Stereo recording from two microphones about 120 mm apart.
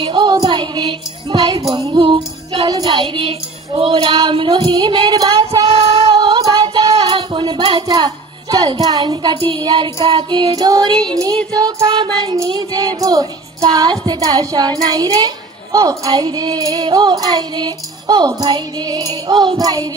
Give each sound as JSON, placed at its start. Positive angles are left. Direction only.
{"t": 0.0, "sound": "music", "side_deg": -40}
{"t": 1.9, "sound": "a child's voice", "side_deg": -45}
{"t": 5.7, "sound": "music", "side_deg": -55}
{"t": 6.1, "sound": "music", "side_deg": -35}
{"t": 11.5, "sound": "a child's voice", "side_deg": -35}